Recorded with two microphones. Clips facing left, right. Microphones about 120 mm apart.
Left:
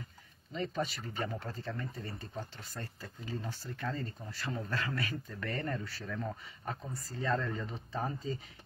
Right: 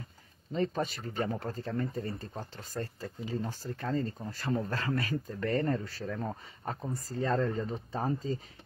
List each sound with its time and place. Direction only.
0.5 s speech: 40° right (ahead or behind)